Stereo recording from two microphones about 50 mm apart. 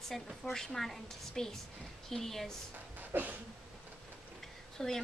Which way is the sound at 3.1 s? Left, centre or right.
Right.